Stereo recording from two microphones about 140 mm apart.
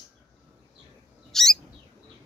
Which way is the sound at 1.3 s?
Centre (ahead or behind).